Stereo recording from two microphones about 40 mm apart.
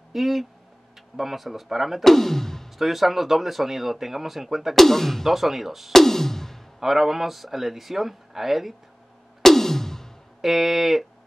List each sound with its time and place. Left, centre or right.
0.1 s speech: centre
2.0 s speech: centre
2.8 s speech: centre
4.7 s speech: centre
5.3 s speech: centre
5.9 s music: centre
6.8 s speech: centre
9.4 s music: centre
10.4 s speech: centre